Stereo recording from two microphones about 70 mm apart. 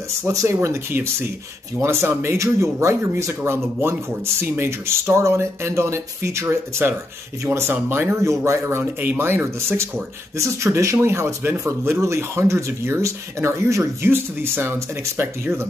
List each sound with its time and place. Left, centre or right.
0.2 s speech: right
0.6 s speech: right
6.4 s speech: right
8.2 s speech: right